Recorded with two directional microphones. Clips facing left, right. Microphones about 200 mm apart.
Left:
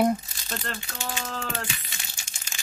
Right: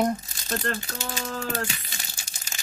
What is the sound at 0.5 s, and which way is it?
Crumpling, 40° right (ahead or behind).